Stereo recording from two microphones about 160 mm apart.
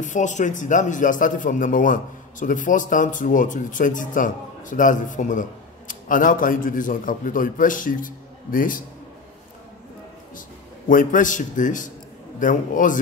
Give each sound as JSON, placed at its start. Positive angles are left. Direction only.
{"t": 0.0, "sound": "a man's voice", "side_deg": 50}
{"t": 10.9, "sound": "a man's voice", "side_deg": 55}